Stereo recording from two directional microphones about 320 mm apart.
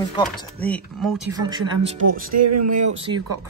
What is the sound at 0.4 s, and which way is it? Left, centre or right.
Speech, centre.